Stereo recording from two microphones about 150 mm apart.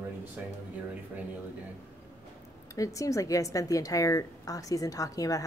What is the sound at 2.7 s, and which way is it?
A woman's voice, 20° left (ahead or behind).